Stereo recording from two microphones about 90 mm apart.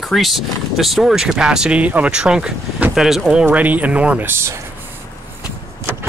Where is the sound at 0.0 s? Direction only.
Centre (ahead or behind).